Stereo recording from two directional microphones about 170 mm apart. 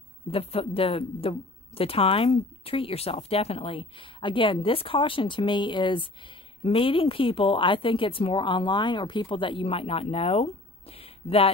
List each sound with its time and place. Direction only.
0.3 s speech: 35° left (ahead or behind)